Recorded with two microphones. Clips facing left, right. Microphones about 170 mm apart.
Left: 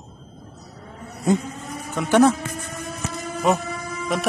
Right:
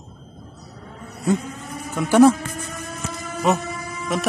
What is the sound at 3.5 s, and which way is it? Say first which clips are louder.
Speech: even; centre (ahead or behind).